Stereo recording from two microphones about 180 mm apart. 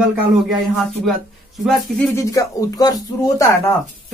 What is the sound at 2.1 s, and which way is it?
Speech, 20° left (ahead or behind).